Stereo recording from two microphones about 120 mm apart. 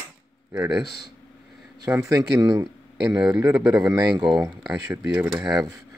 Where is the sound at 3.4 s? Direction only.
20° right (ahead or behind).